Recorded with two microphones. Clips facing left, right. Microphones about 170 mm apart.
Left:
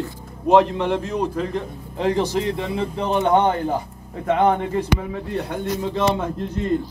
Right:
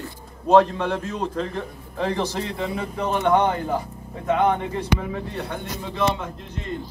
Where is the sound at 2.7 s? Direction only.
30° left (ahead or behind).